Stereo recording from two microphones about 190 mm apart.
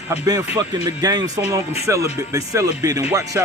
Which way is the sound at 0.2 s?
20° right (ahead or behind).